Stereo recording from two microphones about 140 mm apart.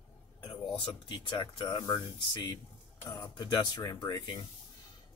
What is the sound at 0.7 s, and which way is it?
Speech, 40° left (ahead or behind).